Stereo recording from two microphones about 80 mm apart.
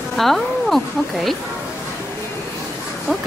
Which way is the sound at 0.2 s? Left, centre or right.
Centre.